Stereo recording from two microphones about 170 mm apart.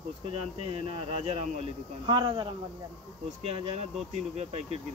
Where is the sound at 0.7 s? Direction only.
35° right (ahead or behind).